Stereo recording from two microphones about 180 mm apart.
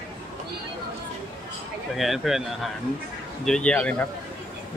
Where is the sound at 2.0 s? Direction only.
Centre (ahead or behind).